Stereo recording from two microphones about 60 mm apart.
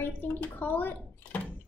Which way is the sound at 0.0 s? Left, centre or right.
Left.